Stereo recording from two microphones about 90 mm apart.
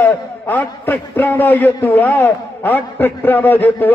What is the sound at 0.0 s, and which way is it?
A man's voice, 20° left (ahead or behind).